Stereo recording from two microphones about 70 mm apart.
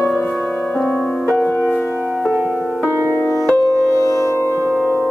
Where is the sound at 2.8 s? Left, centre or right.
Right.